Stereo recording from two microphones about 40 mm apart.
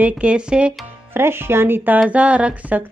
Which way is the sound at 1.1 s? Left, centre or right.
Right.